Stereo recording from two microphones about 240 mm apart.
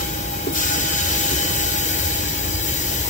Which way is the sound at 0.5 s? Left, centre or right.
Left.